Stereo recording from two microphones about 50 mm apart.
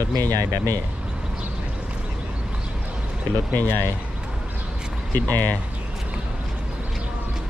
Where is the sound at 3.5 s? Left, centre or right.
Left.